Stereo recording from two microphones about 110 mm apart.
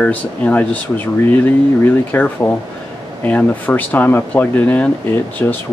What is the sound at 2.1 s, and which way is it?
Speech, 15° left (ahead or behind).